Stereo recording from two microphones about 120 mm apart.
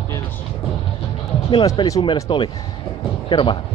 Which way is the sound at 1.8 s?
45° left (ahead or behind).